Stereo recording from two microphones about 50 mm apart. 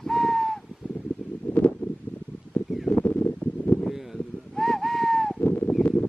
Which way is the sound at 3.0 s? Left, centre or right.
Left.